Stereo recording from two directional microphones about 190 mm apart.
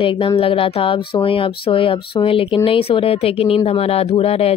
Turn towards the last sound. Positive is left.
turn(degrees=30)  # may be behind; listen again after turning